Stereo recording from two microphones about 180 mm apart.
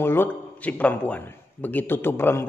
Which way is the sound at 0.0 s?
10° left (ahead or behind).